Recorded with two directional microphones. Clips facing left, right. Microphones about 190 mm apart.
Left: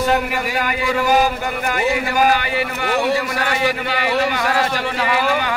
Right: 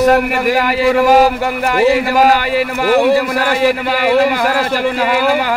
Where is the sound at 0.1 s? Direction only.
65° right (ahead or behind).